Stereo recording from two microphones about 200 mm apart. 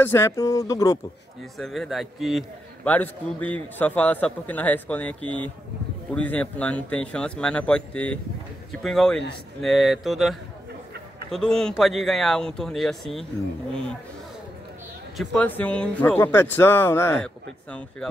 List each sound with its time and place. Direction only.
0.0 s a man's voice: 15° left (ahead or behind)
1.6 s a man's voice: centre (ahead or behind)
15.1 s a man's voice: 5° left (ahead or behind)